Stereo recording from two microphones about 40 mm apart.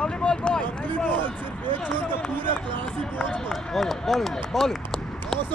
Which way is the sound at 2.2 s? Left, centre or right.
Left.